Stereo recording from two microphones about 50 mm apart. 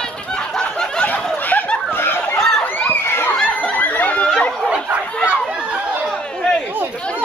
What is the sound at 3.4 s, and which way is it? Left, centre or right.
Snicker, left.